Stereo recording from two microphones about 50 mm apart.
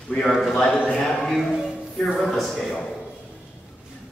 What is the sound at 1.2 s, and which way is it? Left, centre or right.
A man's voice, centre.